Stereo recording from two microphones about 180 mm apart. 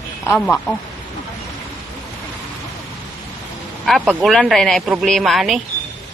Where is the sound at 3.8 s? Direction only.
Centre (ahead or behind).